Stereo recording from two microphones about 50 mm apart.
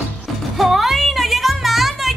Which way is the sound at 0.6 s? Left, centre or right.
Centre.